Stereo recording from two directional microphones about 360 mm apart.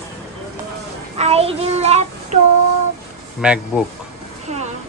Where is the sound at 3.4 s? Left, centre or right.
Centre.